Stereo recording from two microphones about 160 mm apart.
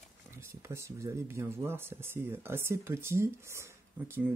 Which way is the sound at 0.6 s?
20° right (ahead or behind).